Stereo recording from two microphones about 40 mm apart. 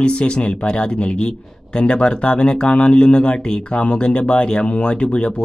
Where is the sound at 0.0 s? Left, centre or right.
Left.